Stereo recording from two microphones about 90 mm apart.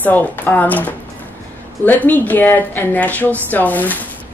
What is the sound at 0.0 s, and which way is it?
A woman's voice, 20° left (ahead or behind).